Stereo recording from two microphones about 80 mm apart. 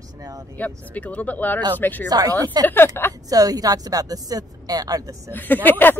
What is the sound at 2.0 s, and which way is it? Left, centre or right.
Speech, right.